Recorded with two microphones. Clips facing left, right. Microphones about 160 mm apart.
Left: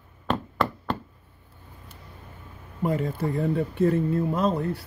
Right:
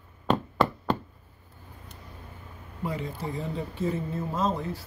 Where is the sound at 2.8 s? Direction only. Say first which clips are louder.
Left 7 dB; 50° left (ahead or behind).